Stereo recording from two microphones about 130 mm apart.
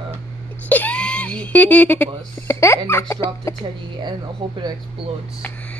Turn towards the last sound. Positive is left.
turn(degrees=-40)  # may be behind; listen again after turning